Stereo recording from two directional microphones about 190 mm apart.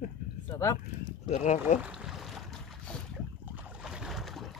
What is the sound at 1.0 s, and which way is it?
Speech, 35° left (ahead or behind).